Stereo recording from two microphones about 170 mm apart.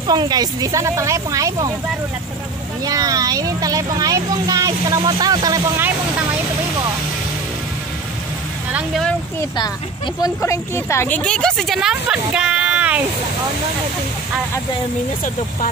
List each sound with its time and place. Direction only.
0.0 s speech: 25° right (ahead or behind)
2.8 s speech: 20° right (ahead or behind)
8.7 s speech: centre (ahead or behind)
10.2 s speech: 15° left (ahead or behind); by 13.0 s 10° right (ahead or behind)